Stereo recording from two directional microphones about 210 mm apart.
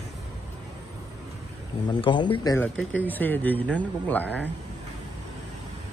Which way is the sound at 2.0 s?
25° left (ahead or behind).